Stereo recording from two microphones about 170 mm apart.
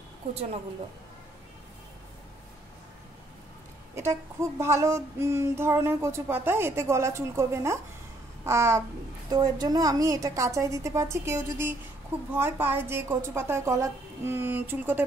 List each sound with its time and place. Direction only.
0.3 s speech: 35° right (ahead or behind)
3.9 s female singing: 15° right (ahead or behind)
9.3 s a woman's voice: 25° right (ahead or behind)
12.3 s female singing: 10° right (ahead or behind)